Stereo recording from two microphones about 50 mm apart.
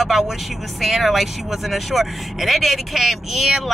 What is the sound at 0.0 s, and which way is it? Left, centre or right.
Speech, centre.